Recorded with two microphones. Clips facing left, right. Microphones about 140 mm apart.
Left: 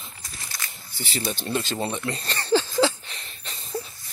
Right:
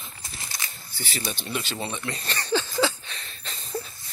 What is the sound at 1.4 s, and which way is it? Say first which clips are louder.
Speech: left 6 dB; 40° left (ahead or behind).